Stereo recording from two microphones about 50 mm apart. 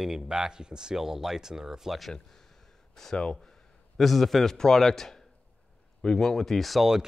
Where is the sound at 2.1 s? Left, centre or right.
Centre.